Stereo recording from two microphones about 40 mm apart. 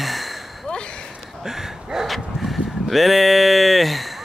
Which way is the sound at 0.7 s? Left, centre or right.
Left.